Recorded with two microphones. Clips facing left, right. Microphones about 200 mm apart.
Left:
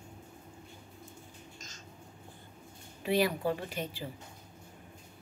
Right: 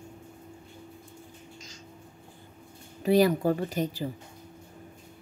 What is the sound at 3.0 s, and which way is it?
A woman's voice, 40° right (ahead or behind).